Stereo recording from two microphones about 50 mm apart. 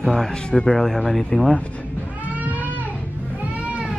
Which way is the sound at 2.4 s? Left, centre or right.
Right.